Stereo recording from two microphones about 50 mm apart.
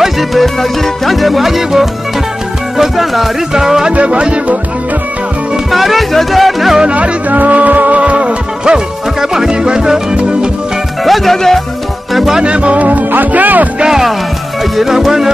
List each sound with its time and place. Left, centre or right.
0.0 s music: centre
3.9 s music: right
5.7 s music: centre
6.8 s music: right
11.1 s music: centre
12.4 s speech: right
13.7 s music: centre